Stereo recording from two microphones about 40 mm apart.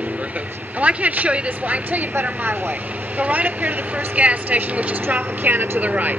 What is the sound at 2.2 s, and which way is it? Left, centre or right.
Speech, right.